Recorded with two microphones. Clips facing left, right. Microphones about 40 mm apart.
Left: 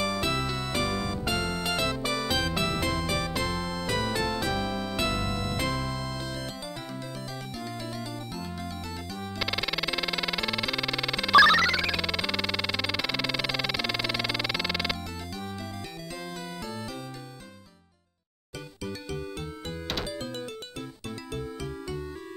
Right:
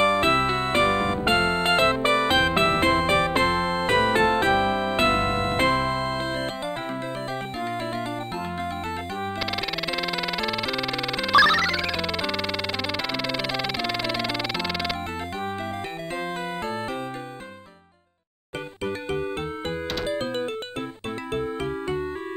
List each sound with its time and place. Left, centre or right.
0.0 s music: right
9.4 s music: centre
18.9 s music: right